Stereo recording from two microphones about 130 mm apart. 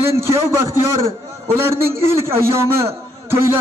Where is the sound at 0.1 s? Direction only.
20° right (ahead or behind).